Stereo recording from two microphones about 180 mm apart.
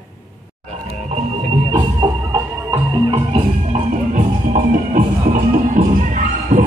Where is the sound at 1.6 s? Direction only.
20° right (ahead or behind).